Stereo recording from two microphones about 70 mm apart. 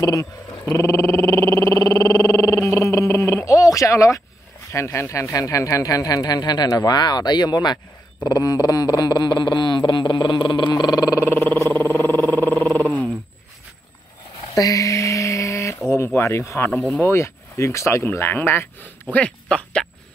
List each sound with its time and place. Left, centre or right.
0.0 s speech: left
10.7 s a sound: left
11.1 s a sound: left
11.8 s roaring cats: left
12.3 s wild animals: left
14.5 s a sound: left
16.2 s speech: left
16.7 s speech: centre
17.0 s speech: left
18.1 s speech: left
19.1 s speech: centre